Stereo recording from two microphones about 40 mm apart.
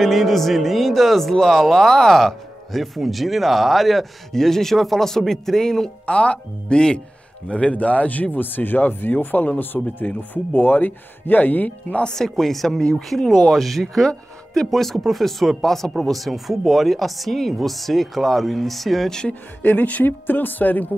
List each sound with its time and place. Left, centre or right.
0.0 s speech: centre
6.0 s speech: left
12.0 s speech: centre
13.3 s speech: centre
19.6 s speech: left